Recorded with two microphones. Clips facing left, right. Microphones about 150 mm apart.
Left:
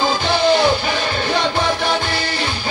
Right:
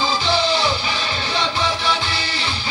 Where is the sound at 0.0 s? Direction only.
55° left (ahead or behind).